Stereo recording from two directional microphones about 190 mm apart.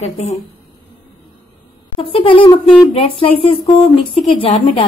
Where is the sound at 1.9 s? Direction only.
25° left (ahead or behind).